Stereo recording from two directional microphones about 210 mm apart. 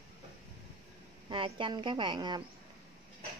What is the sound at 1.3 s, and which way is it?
A woman's voice, 25° right (ahead or behind).